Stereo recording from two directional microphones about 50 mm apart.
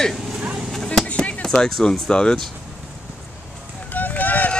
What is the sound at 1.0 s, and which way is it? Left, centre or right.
Chop, left.